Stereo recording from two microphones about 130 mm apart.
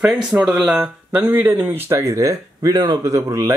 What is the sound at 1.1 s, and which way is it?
Speech, 15° right (ahead or behind).